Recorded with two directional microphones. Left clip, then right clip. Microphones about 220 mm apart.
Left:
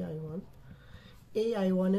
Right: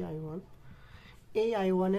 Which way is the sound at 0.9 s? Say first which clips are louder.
Right 1 dB; 40° right (ahead or behind).